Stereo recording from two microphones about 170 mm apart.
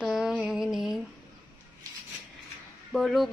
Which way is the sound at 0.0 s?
5° right (ahead or behind).